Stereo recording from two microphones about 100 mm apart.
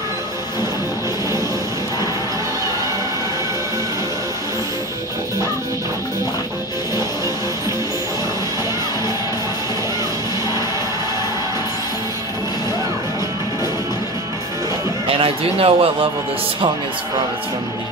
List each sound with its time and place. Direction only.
15.0 s a man's voice: 65° right (ahead or behind)